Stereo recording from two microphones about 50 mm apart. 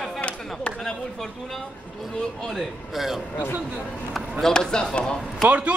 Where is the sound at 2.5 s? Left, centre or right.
Centre.